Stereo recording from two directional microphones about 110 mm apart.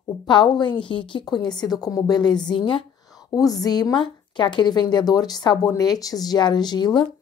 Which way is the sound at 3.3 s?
35° left (ahead or behind).